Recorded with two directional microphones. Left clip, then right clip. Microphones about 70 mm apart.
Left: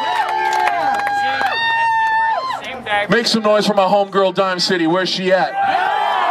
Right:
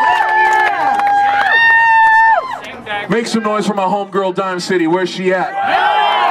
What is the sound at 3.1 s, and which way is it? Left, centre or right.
Speech, centre.